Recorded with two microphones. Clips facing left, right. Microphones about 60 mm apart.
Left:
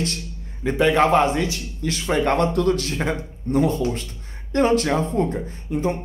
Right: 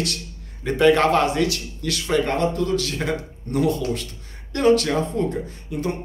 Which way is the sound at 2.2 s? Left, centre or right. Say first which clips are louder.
Left 3 dB; left.